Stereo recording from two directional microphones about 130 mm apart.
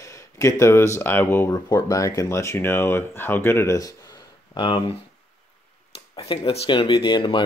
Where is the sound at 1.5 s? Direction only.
30° left (ahead or behind).